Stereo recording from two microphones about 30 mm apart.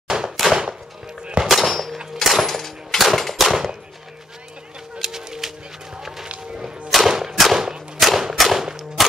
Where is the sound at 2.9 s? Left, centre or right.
Centre.